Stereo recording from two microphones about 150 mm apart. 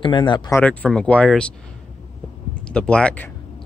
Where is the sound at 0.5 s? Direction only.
10° left (ahead or behind).